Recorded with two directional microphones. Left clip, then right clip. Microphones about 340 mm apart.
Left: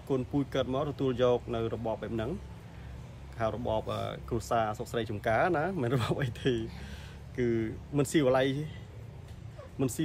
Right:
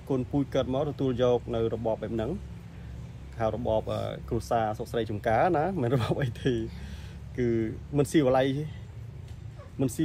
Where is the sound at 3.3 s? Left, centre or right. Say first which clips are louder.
Right 4 dB; centre.